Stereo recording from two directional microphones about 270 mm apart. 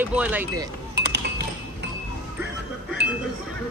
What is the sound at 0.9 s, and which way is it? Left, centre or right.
Chink, right.